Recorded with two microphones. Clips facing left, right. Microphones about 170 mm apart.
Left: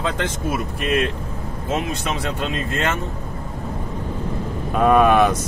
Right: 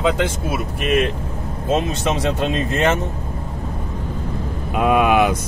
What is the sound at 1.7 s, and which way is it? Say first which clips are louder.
Speech: right 5 dB; 20° right (ahead or behind).